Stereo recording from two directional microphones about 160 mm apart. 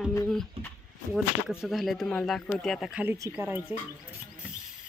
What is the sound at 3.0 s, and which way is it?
Speech, 15° right (ahead or behind).